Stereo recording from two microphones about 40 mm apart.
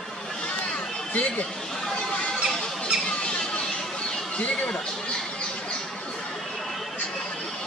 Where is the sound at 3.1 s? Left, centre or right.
Left.